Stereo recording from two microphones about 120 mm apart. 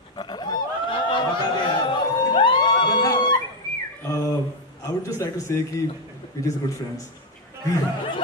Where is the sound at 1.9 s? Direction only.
40° left (ahead or behind).